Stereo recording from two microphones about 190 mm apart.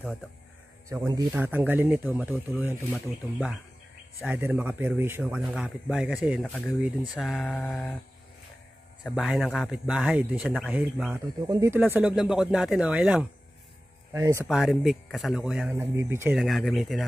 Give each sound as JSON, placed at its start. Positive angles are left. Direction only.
{"t": 0.8, "sound": "speech", "side_deg": -15}
{"t": 9.0, "sound": "speech", "side_deg": -5}
{"t": 11.4, "sound": "speech", "side_deg": -15}
{"t": 11.9, "sound": "speech", "side_deg": -5}
{"t": 14.5, "sound": "speech", "side_deg": 0}
{"t": 15.7, "sound": "speech", "side_deg": -15}
{"t": 16.3, "sound": "speech", "side_deg": 0}